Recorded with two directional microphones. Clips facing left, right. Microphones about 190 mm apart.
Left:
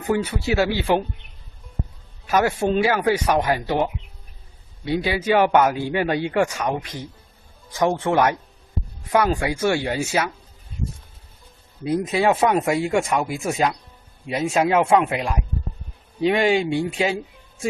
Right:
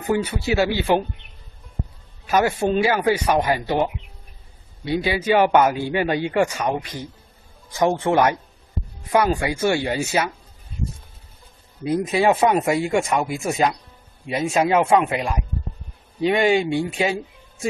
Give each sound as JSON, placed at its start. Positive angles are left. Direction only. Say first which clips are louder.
{"t": 0.1, "sound": "speech", "louder": "even", "side_deg": -5}
{"t": 2.3, "sound": "speech", "louder": "even", "side_deg": -5}
{"t": 7.8, "sound": "speech", "louder": "right 1 dB", "side_deg": -5}
{"t": 11.8, "sound": "speech", "louder": "right 1 dB", "side_deg": 0}